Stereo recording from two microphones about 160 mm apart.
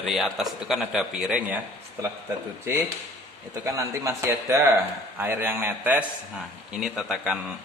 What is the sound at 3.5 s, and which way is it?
A man's voice, 20° right (ahead or behind).